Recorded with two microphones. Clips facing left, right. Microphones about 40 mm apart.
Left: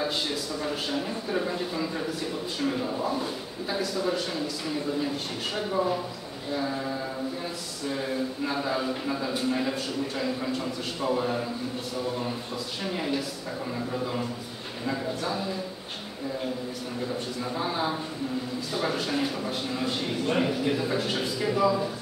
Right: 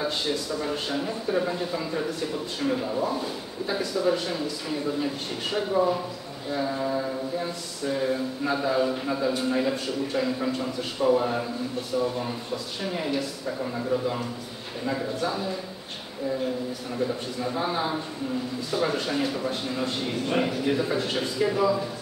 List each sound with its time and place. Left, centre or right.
0.0 s a man's voice: centre
12.8 s a man's voice: centre
14.9 s a man's voice: centre
17.4 s a man's voice: centre